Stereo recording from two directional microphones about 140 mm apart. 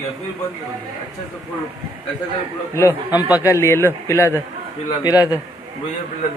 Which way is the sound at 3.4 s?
20° left (ahead or behind).